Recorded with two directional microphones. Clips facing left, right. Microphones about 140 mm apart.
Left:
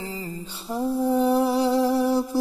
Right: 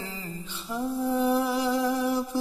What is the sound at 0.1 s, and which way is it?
Mantra, 35° left (ahead or behind).